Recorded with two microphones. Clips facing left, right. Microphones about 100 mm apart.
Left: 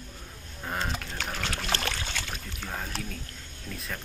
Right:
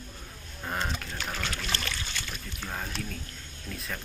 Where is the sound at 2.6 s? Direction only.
Centre (ahead or behind).